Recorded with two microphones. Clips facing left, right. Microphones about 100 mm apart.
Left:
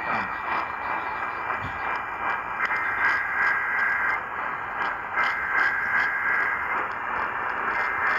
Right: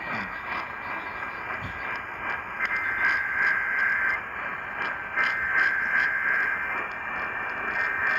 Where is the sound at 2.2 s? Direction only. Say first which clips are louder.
Left 3 dB; 40° left (ahead or behind).